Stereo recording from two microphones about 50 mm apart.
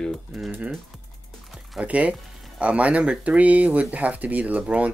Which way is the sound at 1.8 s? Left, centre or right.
Right.